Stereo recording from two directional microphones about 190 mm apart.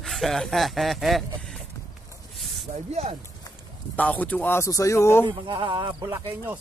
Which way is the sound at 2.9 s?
35° right (ahead or behind).